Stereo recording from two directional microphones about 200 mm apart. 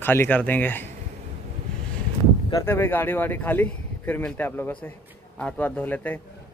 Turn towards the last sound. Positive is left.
turn(degrees=10)  # may be behind; listen again after turning